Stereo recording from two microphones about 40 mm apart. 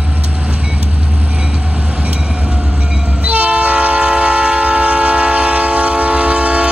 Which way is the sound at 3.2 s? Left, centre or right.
Right.